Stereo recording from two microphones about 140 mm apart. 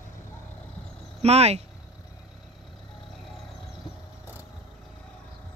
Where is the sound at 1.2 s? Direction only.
50° right (ahead or behind).